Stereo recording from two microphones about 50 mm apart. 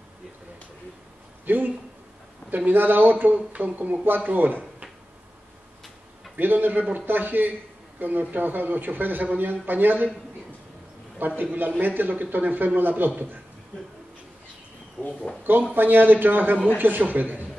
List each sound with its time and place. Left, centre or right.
1.4 s a man's voice: right
6.3 s a man's voice: right
11.1 s a man's voice: right
15.0 s speech: centre
15.7 s a man's voice: right